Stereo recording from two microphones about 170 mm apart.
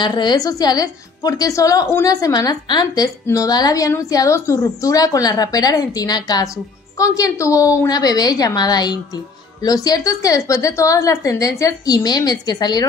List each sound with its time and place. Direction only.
0.0 s a woman's voice: 25° left (ahead or behind)